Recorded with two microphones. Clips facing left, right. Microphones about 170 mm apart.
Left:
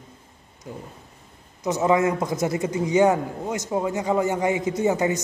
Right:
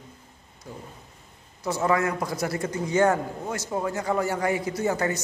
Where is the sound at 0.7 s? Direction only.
20° left (ahead or behind).